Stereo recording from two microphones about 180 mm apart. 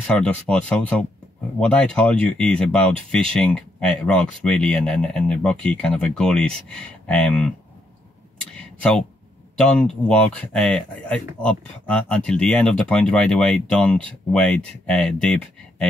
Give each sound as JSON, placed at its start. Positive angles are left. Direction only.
{"t": 0.0, "sound": "speech", "side_deg": 5}
{"t": 8.5, "sound": "a sound", "side_deg": 5}
{"t": 9.6, "sound": "speech", "side_deg": 5}